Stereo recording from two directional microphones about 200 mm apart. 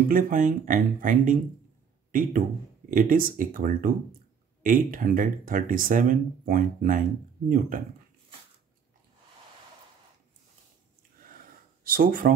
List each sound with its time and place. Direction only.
0.1 s speech: 45° right (ahead or behind)
2.9 s speech: 45° right (ahead or behind)
11.8 s speech: 45° right (ahead or behind)